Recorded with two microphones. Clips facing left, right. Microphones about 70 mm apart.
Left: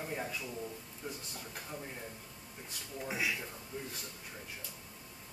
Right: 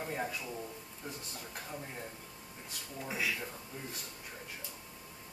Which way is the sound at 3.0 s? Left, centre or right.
Centre.